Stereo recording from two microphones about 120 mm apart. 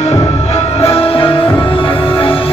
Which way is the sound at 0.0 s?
60° left (ahead or behind).